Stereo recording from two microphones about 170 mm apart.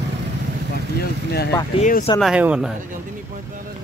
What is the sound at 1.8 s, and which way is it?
Speech, 50° left (ahead or behind).